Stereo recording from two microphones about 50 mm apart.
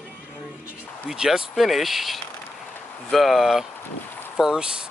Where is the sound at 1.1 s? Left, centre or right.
Centre.